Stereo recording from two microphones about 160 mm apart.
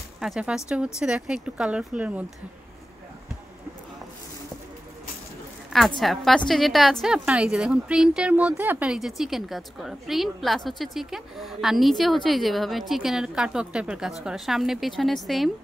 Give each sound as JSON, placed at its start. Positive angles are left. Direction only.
{"t": 0.2, "sound": "a woman's voice", "side_deg": -5}
{"t": 5.9, "sound": "a woman's voice", "side_deg": 0}